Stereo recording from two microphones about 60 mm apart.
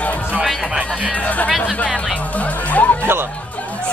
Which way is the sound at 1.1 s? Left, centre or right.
Left.